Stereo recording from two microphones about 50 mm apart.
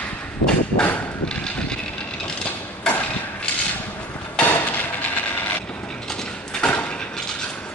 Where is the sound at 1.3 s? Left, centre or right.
Centre.